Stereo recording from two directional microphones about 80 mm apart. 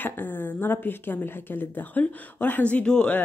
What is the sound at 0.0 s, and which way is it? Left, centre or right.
A woman's voice, left.